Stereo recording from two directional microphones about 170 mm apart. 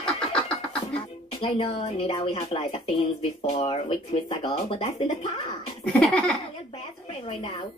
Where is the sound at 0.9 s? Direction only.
35° left (ahead or behind).